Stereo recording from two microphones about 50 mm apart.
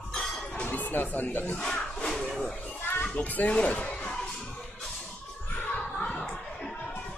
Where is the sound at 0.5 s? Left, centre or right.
Left.